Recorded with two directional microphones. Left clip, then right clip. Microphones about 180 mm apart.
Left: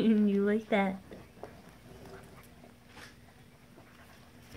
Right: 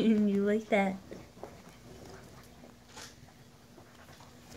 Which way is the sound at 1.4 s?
5° left (ahead or behind).